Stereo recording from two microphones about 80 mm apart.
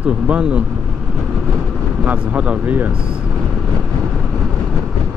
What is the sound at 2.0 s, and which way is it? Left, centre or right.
Speech, centre.